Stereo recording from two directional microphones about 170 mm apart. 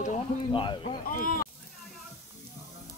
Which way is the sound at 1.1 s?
55° left (ahead or behind).